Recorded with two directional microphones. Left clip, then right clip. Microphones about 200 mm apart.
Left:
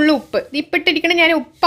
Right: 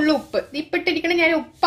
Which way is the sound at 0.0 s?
35° left (ahead or behind).